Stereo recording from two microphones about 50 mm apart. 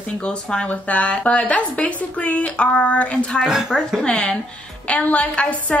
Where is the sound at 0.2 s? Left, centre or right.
Centre.